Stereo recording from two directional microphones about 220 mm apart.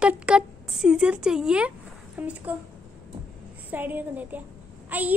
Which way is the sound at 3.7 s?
10° right (ahead or behind).